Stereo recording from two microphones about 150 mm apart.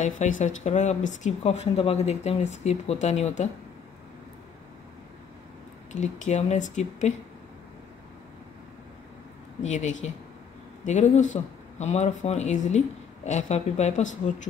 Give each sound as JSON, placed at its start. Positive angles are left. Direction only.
{"t": 0.0, "sound": "speech", "side_deg": 55}
{"t": 5.9, "sound": "speech", "side_deg": 50}
{"t": 9.6, "sound": "speech", "side_deg": 50}